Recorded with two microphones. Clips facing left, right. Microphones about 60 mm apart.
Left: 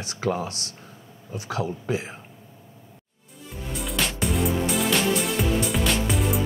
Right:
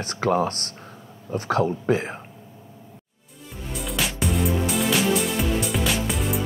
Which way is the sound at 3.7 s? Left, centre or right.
Centre.